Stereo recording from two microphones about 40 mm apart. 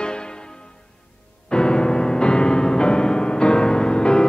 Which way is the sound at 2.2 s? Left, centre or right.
Left.